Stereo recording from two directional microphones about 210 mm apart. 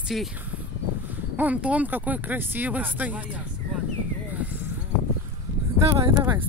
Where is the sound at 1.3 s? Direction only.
5° right (ahead or behind).